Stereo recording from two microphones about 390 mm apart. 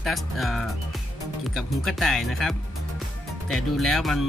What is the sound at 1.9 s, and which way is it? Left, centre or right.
Speech, centre.